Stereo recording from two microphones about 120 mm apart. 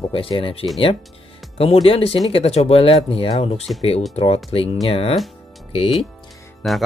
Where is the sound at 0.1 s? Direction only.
50° left (ahead or behind).